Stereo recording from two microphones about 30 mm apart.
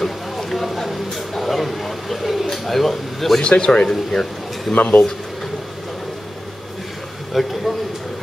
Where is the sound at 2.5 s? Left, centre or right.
Centre.